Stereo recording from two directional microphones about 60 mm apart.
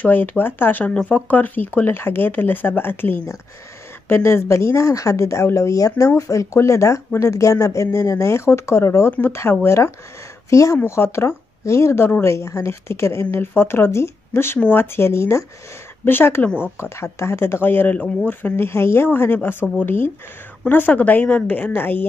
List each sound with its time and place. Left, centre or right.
0.0 s a woman's voice: left
6.0 s speech: left
10.5 s speech: left
10.9 s a woman's voice: left